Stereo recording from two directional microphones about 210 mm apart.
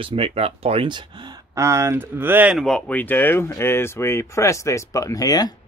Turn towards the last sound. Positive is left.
turn(degrees=20)  # may be behind; listen again after turning